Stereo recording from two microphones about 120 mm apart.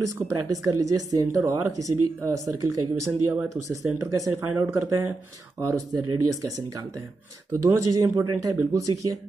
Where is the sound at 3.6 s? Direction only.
30° right (ahead or behind).